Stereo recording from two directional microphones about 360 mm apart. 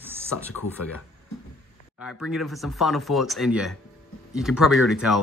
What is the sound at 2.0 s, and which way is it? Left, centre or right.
Speech, centre.